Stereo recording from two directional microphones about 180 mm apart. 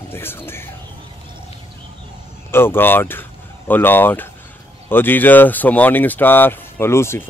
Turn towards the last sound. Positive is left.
turn(degrees=15)  # may be behind; listen again after turning